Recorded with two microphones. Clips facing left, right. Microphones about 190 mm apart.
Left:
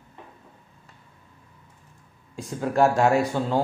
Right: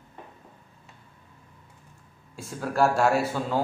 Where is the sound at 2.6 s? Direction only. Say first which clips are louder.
Left 3 dB; 20° left (ahead or behind).